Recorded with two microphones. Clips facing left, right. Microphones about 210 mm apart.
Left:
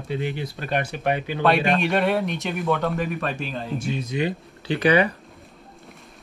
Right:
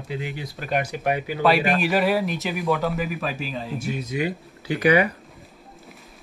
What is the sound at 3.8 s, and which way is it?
Speech, 25° left (ahead or behind).